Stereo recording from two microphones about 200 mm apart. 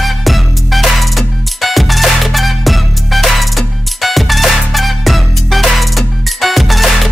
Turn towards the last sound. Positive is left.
turn(degrees=0)  # may be behind; listen again after turning